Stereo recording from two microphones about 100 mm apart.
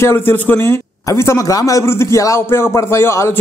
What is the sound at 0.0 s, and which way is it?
A man's voice, 25° left (ahead or behind).